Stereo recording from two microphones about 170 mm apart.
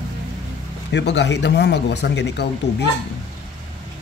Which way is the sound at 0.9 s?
90° left.